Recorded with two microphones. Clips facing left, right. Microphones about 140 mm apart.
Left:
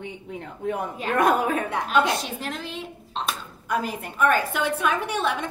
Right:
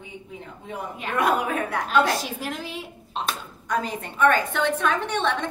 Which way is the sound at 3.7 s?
5° left (ahead or behind).